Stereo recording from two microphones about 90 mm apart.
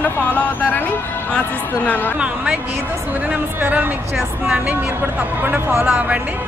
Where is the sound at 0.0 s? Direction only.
15° left (ahead or behind).